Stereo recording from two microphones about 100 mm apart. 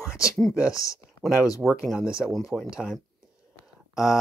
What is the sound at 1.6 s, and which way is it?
Speech, 5° left (ahead or behind).